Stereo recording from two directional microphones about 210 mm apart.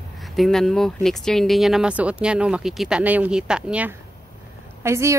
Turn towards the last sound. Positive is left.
turn(degrees=-15)  # may be behind; listen again after turning